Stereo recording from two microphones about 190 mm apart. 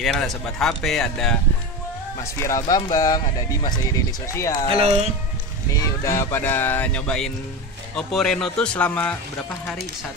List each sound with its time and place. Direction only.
0.0 s speech: 5° left (ahead or behind)
2.7 s speech: 20° left (ahead or behind)
4.6 s speech: 35° right (ahead or behind)
5.7 s speech: 15° left (ahead or behind)